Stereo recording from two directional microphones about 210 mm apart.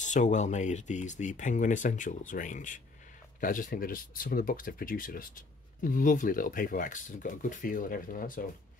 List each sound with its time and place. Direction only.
0.0 s speech: 35° left (ahead or behind)